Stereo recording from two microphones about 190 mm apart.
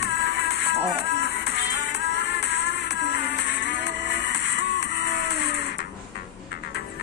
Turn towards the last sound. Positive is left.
turn(degrees=60)  # may be behind; listen again after turning